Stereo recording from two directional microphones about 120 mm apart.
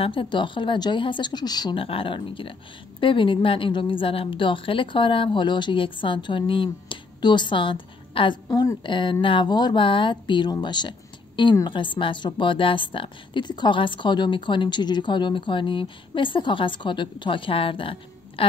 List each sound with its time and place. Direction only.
0.0 s speech: 45° left (ahead or behind)
1.8 s a woman's voice: 50° left (ahead or behind)
8.5 s a woman's voice: 35° left (ahead or behind)